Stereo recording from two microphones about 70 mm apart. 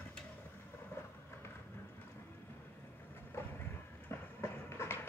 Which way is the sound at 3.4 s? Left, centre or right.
Left.